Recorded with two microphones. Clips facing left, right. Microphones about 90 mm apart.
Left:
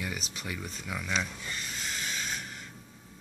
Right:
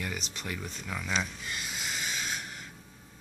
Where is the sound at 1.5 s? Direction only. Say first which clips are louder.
Right 2 dB; 10° right (ahead or behind).